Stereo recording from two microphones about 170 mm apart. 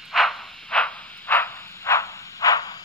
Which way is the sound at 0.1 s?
Centre (ahead or behind).